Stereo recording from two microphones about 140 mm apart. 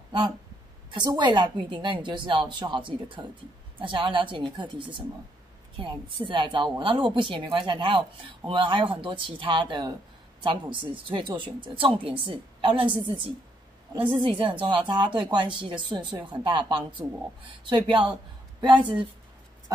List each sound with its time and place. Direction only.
0.9 s speech: 30° right (ahead or behind)
13.9 s speech: 35° right (ahead or behind)